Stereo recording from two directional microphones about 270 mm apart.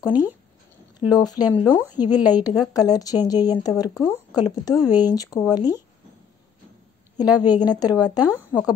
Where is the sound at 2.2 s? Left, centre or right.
Centre.